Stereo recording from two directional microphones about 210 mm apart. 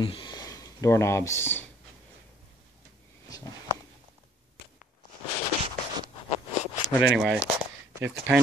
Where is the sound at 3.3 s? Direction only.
15° left (ahead or behind).